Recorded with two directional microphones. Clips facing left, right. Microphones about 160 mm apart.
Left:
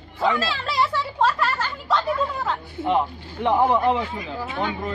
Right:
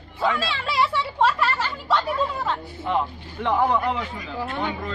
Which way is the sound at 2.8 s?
20° left (ahead or behind).